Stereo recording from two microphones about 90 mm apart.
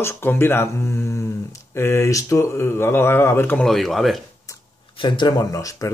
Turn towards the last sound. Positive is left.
turn(degrees=40)  # may be behind; listen again after turning